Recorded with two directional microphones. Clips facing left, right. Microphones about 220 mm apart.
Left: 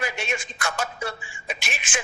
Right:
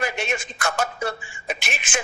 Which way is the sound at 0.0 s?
45° right (ahead or behind).